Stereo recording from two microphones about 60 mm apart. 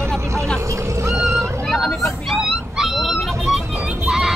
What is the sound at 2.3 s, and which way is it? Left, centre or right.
Dog, centre.